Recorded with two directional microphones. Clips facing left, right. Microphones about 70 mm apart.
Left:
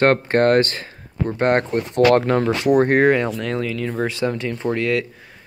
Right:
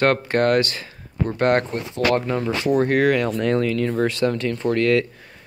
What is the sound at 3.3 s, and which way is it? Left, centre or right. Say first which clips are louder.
Speech: right 4 dB; centre.